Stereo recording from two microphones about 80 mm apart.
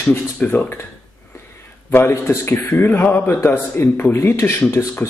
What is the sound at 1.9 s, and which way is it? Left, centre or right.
A man's voice, left.